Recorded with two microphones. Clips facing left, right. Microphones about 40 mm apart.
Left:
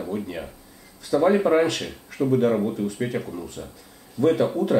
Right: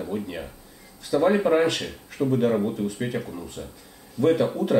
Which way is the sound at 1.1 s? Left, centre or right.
Centre.